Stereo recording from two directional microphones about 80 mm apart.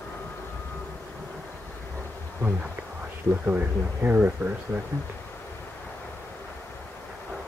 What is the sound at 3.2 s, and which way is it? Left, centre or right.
Speech, right.